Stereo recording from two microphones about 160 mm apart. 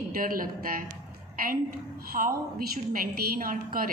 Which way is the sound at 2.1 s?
50° right (ahead or behind).